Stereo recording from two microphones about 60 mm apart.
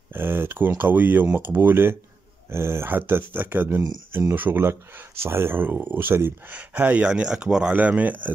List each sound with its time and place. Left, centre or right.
0.1 s speech: right
6.5 s speech: right
7.1 s speech: centre
7.7 s speech: right